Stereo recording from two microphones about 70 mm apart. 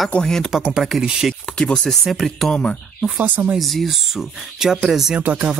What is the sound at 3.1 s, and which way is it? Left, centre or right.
Speech, right.